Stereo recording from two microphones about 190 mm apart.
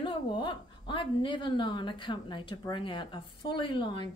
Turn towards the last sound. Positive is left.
turn(degrees=25)  # may be behind; listen again after turning